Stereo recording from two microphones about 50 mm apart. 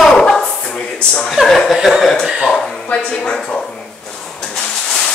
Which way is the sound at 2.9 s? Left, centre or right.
Left.